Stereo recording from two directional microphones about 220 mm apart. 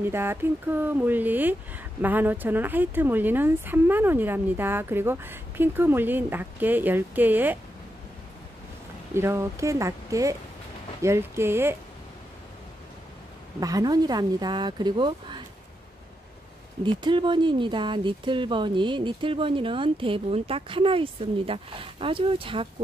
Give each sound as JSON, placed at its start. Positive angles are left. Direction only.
{"t": 0.0, "sound": "speech", "side_deg": -10}
{"t": 9.1, "sound": "speech", "side_deg": -10}
{"t": 13.6, "sound": "speech", "side_deg": -15}
{"t": 16.8, "sound": "speech", "side_deg": -20}